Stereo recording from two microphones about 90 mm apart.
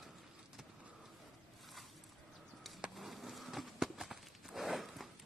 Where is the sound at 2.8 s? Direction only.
Centre (ahead or behind).